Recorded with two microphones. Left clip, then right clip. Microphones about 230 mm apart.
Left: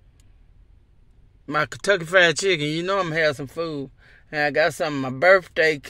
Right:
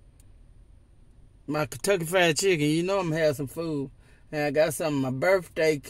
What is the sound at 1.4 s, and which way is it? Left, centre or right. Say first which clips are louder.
Speech: left 5 dB; centre.